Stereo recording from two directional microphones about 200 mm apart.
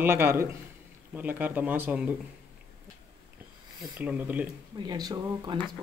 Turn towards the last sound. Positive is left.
turn(degrees=-20)  # may be behind; listen again after turning